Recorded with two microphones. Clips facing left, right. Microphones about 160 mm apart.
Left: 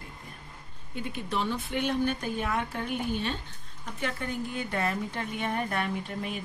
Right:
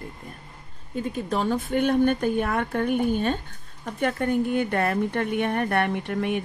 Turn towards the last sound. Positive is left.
turn(degrees=-65)  # may be behind; listen again after turning